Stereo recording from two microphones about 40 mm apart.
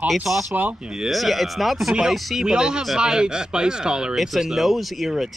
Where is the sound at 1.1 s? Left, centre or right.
Centre.